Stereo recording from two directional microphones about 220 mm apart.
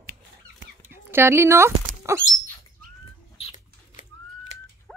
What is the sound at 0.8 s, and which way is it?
Speech, 10° right (ahead or behind).